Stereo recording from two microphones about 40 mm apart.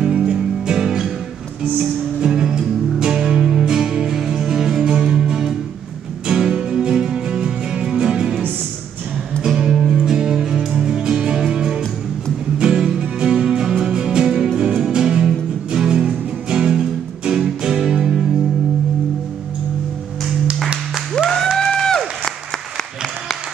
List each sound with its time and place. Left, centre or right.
0.3 s music: centre
9.4 s music: centre
21.2 s applause: centre
21.5 s a sound: centre